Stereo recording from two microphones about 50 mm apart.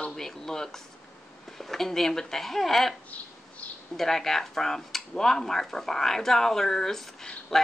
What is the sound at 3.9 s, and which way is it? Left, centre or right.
Speech, centre.